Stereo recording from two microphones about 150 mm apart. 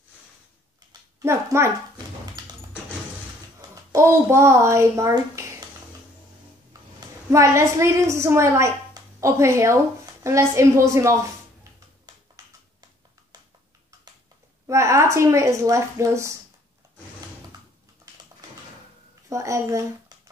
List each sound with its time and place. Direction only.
1.2 s a child's voice: 20° right (ahead or behind)
3.9 s a woman's voice: 20° right (ahead or behind)
7.2 s a woman's voice: 20° right (ahead or behind)
12.1 s a sound: 25° right (ahead or behind)
14.7 s a woman's voice: 20° right (ahead or behind)
19.2 s speech: 20° right (ahead or behind)